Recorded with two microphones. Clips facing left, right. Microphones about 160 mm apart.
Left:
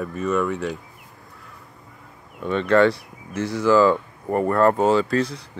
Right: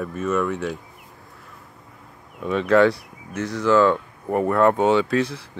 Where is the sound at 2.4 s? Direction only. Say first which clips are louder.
Even; centre (ahead or behind).